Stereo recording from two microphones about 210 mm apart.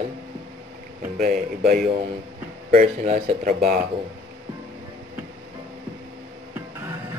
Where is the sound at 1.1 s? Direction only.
45° right (ahead or behind).